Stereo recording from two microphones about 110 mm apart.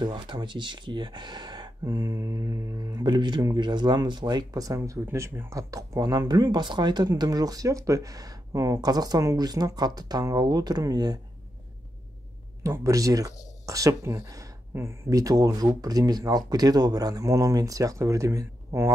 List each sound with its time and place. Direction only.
0.0 s speech: 45° right (ahead or behind)
12.6 s speech: 30° right (ahead or behind)